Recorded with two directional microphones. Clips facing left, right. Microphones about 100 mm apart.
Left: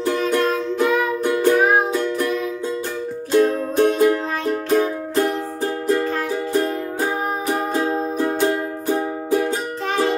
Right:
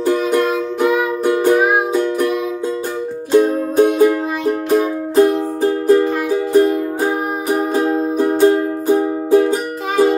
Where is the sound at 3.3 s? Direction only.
15° right (ahead or behind).